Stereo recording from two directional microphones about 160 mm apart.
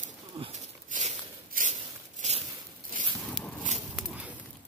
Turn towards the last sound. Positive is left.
turn(degrees=-5)  # may be behind; listen again after turning